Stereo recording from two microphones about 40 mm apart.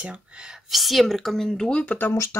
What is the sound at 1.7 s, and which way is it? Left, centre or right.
Speech, left.